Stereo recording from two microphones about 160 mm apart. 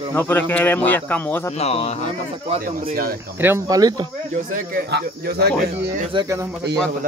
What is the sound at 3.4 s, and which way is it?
Speech, 15° right (ahead or behind).